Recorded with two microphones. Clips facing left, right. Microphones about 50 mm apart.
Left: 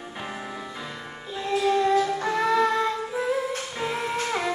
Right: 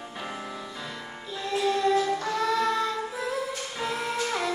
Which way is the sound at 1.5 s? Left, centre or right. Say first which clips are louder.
Left 3 dB; centre.